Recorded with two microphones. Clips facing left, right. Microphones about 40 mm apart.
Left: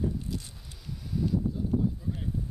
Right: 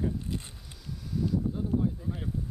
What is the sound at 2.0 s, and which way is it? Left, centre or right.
Speech, centre.